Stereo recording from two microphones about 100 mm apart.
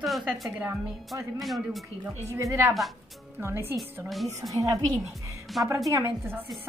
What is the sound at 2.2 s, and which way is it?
A woman's voice, 30° right (ahead or behind).